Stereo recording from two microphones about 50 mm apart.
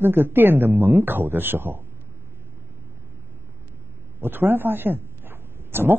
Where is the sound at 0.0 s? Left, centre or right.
Right.